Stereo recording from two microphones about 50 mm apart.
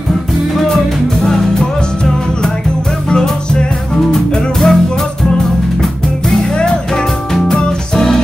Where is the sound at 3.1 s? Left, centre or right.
Centre.